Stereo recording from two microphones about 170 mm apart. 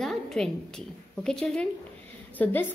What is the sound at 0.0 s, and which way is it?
A woman's voice, centre (ahead or behind).